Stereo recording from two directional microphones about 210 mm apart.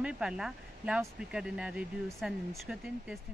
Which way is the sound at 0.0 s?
5° right (ahead or behind).